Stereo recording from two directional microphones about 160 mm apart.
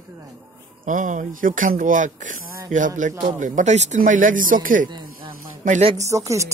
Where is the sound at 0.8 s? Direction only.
55° right (ahead or behind).